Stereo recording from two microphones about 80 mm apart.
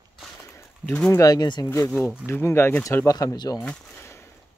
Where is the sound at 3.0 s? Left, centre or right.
Left.